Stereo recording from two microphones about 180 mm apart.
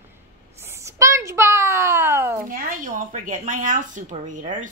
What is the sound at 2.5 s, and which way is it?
Speech, 50° right (ahead or behind).